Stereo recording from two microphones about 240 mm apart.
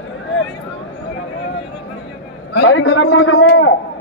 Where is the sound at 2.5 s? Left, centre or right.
Left.